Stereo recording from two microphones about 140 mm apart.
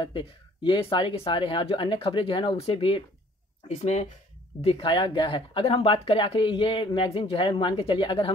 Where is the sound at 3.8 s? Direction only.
50° left (ahead or behind).